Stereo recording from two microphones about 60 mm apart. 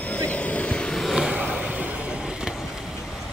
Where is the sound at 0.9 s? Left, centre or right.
Centre.